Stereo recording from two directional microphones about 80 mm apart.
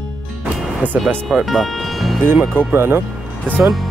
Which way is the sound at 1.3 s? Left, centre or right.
Centre.